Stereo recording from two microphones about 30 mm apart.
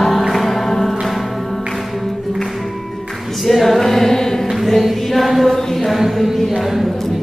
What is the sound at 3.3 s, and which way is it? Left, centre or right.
Choir, centre.